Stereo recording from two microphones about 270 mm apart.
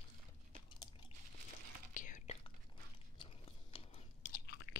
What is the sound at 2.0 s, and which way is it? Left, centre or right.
Whispering, left.